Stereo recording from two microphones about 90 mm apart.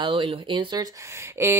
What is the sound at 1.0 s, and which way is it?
Speech, 30° right (ahead or behind).